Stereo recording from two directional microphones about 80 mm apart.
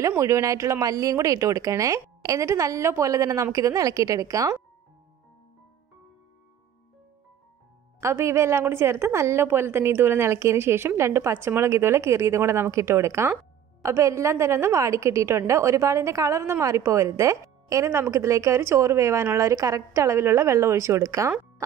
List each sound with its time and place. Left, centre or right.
0.0 s a woman's voice: right
8.0 s a woman's voice: right